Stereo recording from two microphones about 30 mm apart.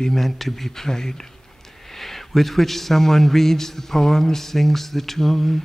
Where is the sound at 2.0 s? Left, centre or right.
Centre.